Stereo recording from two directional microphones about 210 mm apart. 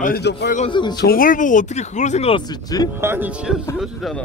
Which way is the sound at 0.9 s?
45° left (ahead or behind).